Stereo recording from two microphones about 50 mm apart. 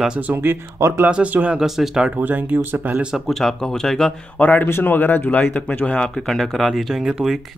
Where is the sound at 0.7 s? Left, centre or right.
Right.